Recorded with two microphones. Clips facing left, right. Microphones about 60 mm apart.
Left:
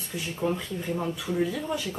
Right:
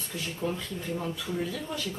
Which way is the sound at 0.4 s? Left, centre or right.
Centre.